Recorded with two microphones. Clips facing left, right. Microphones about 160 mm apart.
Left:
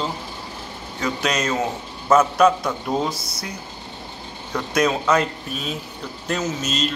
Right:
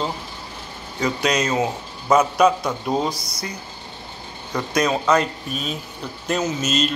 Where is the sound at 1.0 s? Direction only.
Centre (ahead or behind).